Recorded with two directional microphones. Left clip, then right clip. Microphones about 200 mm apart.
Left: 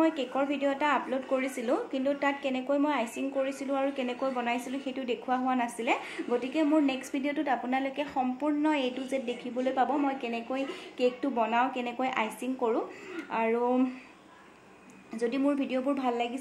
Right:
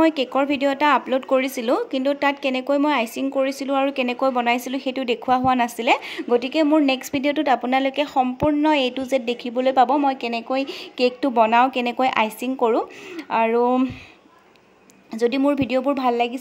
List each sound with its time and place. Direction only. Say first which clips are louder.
0.0 s speech: right 9 dB; 50° right (ahead or behind)
15.1 s speech: right 9 dB; 45° right (ahead or behind)